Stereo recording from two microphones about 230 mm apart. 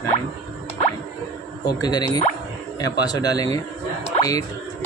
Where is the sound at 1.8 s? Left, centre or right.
Centre.